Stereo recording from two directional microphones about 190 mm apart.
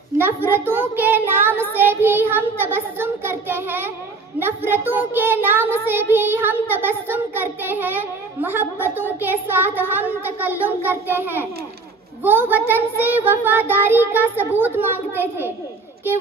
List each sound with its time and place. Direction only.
0.5 s child singing: 10° right (ahead or behind)
4.4 s a child's voice: 10° right (ahead or behind)